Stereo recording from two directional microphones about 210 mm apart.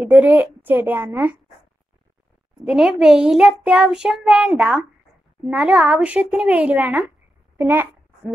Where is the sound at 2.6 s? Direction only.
Centre (ahead or behind).